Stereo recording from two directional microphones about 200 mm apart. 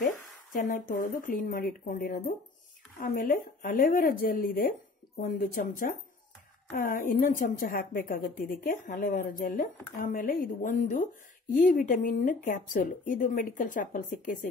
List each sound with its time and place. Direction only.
0.0 s a woman's voice: 45° left (ahead or behind)